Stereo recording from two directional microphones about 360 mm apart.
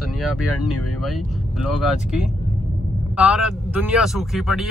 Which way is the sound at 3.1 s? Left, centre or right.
Centre.